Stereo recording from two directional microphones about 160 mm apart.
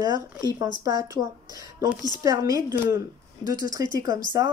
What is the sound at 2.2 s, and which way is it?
Speech, 20° right (ahead or behind).